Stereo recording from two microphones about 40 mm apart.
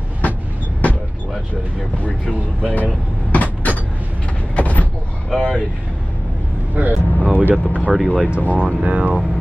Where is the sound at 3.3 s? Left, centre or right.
Left.